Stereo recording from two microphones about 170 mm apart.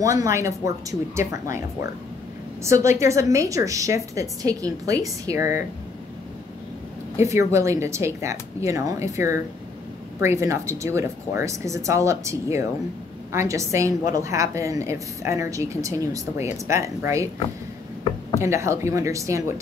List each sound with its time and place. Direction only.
0.0 s a woman's voice: 20° right (ahead or behind)
7.2 s a woman's voice: 15° right (ahead or behind)
18.4 s a woman's voice: 15° right (ahead or behind)